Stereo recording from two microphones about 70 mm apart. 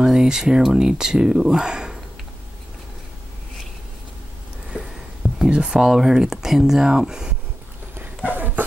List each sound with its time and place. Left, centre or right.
0.0 s speech: centre
4.6 s a sound: centre
5.9 s speech: centre
8.3 s dog: right